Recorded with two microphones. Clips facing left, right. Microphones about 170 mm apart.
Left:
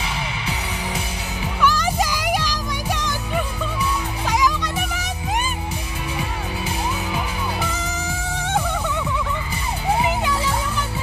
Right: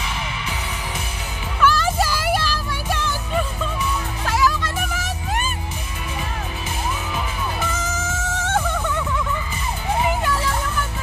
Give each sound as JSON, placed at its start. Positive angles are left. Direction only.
{"t": 1.6, "sound": "music", "side_deg": 15}
{"t": 8.1, "sound": "music", "side_deg": 15}
{"t": 10.0, "sound": "music", "side_deg": 10}